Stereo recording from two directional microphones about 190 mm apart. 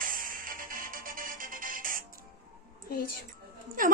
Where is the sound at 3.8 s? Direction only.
45° right (ahead or behind).